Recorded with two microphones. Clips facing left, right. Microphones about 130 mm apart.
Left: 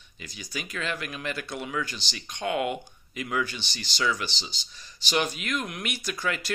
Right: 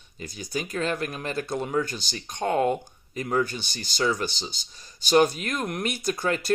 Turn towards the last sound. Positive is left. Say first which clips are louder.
# right 5 dB
turn(degrees=-40)  # may be behind; listen again after turning